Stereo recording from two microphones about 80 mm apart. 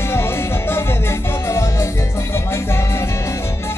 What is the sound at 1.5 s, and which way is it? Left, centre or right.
Music, left.